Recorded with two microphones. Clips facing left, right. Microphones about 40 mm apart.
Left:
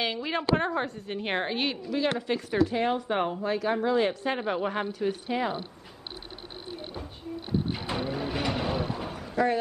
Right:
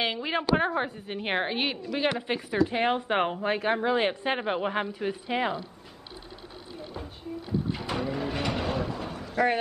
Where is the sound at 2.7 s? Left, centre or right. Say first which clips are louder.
Right 1 dB; right.